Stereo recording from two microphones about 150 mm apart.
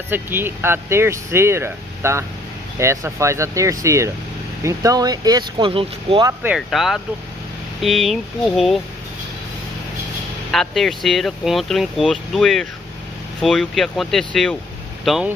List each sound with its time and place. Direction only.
0.1 s speech: 15° right (ahead or behind)
5.7 s speech: 40° right (ahead or behind)
6.4 s speech: 5° right (ahead or behind)
10.5 s speech: centre (ahead or behind)